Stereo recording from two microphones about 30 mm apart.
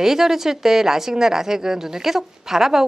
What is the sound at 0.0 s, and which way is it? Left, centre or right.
A woman's voice, centre.